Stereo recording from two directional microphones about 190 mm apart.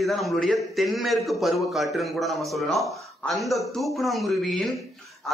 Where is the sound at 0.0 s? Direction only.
Centre (ahead or behind).